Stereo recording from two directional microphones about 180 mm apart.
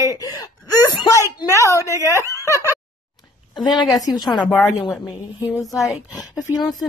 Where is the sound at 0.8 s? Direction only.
20° left (ahead or behind).